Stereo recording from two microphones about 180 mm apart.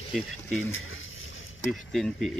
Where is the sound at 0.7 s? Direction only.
90° left.